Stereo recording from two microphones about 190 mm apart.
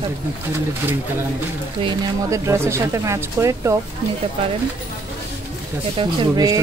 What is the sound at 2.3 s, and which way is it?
Speech, 15° right (ahead or behind).